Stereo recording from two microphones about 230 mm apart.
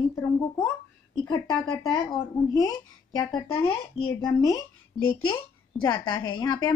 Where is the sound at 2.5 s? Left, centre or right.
Centre.